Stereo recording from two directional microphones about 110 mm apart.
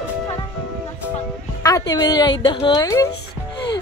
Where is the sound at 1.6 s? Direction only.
30° left (ahead or behind).